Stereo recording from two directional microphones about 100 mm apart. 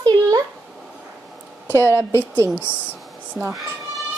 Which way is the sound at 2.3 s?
25° right (ahead or behind).